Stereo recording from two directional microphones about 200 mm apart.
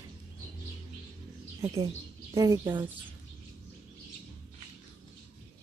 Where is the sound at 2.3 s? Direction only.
15° right (ahead or behind).